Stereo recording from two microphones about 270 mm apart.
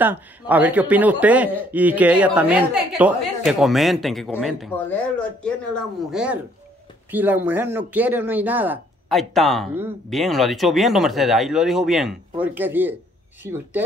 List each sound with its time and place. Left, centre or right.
0.0 s speech: centre